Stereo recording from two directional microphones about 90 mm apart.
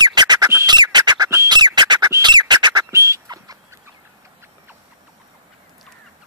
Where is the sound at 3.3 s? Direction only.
45° right (ahead or behind).